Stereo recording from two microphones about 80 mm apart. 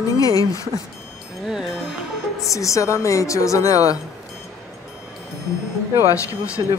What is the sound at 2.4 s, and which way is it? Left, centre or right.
Speech, left.